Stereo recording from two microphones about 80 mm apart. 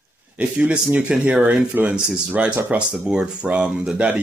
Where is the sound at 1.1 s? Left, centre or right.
Centre.